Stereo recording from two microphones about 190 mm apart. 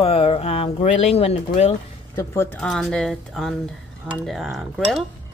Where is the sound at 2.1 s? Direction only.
15° left (ahead or behind).